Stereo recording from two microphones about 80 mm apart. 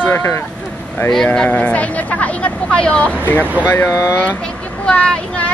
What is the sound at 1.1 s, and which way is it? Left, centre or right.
Speech, centre.